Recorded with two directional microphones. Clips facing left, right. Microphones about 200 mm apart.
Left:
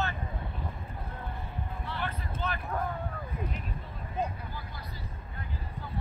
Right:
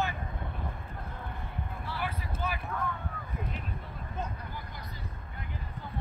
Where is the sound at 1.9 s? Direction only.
10° right (ahead or behind).